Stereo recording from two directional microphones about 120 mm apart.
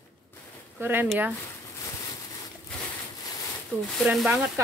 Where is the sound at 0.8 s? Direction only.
15° right (ahead or behind).